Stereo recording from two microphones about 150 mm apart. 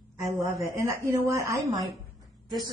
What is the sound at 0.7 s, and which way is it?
A woman's voice, 20° right (ahead or behind).